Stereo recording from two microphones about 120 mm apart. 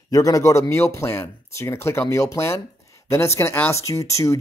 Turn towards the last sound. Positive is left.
turn(degrees=25)  # may be behind; listen again after turning